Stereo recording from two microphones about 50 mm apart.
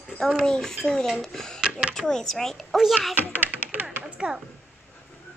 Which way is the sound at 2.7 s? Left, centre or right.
Centre.